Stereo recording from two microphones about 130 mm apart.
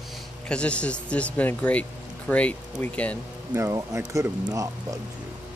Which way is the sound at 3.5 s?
20° right (ahead or behind).